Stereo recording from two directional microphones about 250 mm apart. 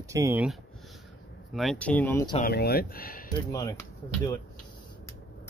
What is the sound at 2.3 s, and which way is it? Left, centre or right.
Speech, left.